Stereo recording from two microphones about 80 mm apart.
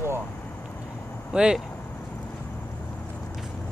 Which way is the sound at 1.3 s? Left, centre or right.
Centre.